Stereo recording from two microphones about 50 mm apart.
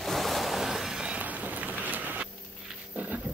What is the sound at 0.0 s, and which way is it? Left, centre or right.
Waves, centre.